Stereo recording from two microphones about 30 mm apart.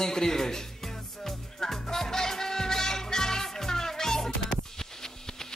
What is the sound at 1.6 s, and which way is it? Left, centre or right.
Music, centre.